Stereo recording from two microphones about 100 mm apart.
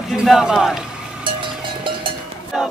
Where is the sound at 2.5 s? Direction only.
5° right (ahead or behind).